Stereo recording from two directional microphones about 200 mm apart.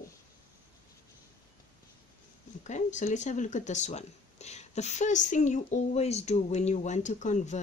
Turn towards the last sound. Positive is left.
turn(degrees=40)  # may be behind; listen again after turning